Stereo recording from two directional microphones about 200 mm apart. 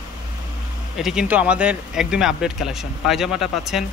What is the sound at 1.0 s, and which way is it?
Speech, 5° right (ahead or behind).